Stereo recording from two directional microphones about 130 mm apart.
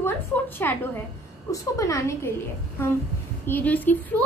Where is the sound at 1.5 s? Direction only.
25° left (ahead or behind).